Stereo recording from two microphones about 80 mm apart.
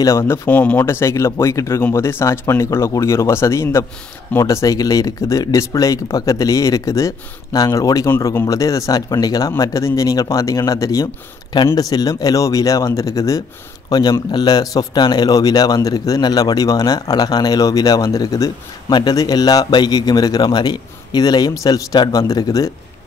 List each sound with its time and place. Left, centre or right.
0.0 s speech: left
0.5 s speech: centre
0.8 s speech: left
11.5 s speech: left
11.8 s speech: left
13.8 s speech: left